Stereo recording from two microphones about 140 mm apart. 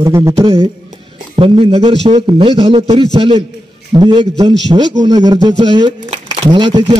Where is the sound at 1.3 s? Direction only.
40° right (ahead or behind).